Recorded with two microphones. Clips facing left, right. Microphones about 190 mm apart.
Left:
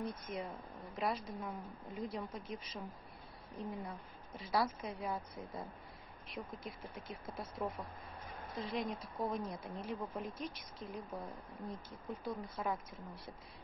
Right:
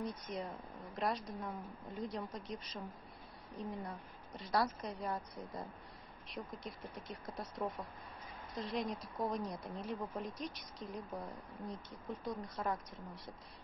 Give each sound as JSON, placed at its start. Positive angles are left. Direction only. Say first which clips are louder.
{"t": 0.3, "sound": "a woman's voice", "louder": "even", "side_deg": 0}